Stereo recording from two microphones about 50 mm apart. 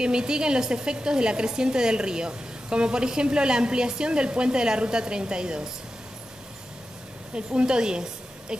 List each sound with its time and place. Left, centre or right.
0.0 s a woman's voice: centre
7.3 s a woman's voice: centre